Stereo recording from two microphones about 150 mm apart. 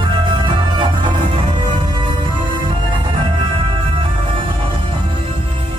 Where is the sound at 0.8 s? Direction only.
30° right (ahead or behind).